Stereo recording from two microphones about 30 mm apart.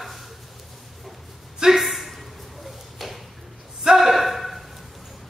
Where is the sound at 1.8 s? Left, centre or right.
Centre.